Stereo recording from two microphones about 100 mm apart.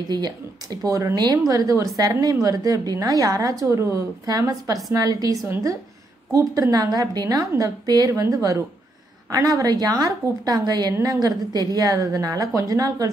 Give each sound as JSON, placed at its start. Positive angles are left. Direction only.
{"t": 0.1, "sound": "a woman's voice", "side_deg": -45}